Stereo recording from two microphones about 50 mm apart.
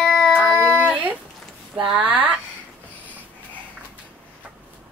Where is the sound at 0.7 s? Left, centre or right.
Right.